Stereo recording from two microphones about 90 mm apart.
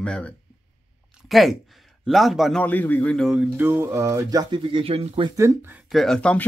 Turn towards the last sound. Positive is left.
turn(degrees=15)  # may be behind; listen again after turning